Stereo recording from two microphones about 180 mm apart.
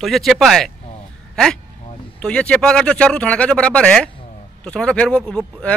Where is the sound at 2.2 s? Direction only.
5° left (ahead or behind).